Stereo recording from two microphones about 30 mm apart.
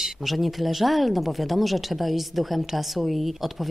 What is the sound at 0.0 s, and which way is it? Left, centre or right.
Speech, centre.